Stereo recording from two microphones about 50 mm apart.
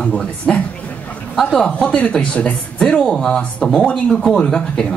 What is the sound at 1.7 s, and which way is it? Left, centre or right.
A woman's voice, left.